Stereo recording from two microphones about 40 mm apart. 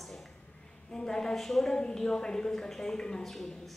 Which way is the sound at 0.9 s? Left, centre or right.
Centre.